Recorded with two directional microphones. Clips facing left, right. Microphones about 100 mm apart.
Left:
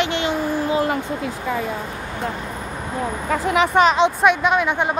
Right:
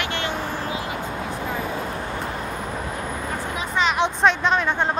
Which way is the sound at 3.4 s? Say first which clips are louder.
Left 10 dB; 90° left.